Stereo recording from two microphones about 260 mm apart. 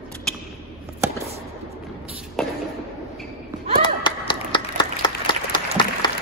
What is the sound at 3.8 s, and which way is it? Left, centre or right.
Applause, centre.